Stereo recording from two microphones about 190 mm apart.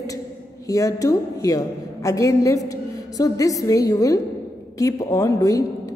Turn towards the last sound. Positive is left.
turn(degrees=15)  # may be behind; listen again after turning